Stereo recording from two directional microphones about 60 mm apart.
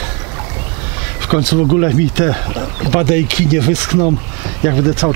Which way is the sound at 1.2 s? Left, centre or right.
Centre.